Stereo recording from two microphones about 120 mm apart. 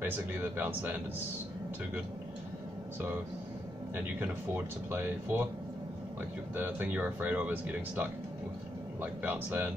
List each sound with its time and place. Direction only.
0.0 s speech: 15° right (ahead or behind)
3.9 s speech: 15° right (ahead or behind)
6.5 s speech: 15° right (ahead or behind)